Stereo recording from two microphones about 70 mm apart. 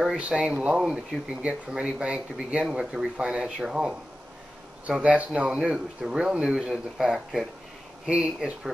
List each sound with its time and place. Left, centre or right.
0.4 s speech: centre